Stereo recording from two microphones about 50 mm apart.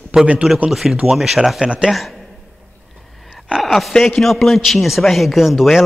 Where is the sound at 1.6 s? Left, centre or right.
Right.